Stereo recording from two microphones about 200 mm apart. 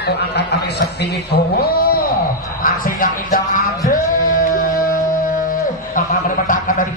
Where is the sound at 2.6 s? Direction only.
45° left (ahead or behind).